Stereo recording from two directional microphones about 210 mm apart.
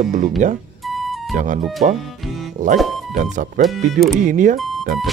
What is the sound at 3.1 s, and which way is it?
Speech, 40° right (ahead or behind).